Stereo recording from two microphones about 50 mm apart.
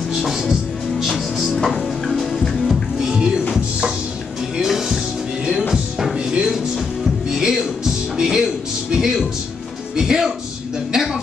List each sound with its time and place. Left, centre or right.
0.2 s music: centre
4.6 s music: centre
6.1 s music: centre
10.9 s a sound: centre